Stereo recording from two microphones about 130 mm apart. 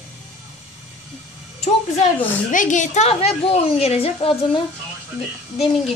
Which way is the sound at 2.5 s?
80° left.